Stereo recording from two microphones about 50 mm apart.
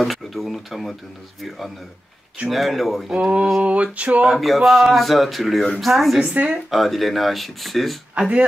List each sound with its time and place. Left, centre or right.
0.0 s speech: centre
2.5 s speech: centre
3.2 s a sound: right
4.4 s speech: centre
6.2 s speech: right
6.5 s speech: centre